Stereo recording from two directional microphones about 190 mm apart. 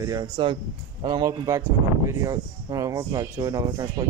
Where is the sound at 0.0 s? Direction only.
20° right (ahead or behind).